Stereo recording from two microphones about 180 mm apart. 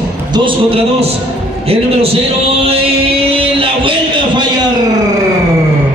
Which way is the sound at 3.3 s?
30° right (ahead or behind).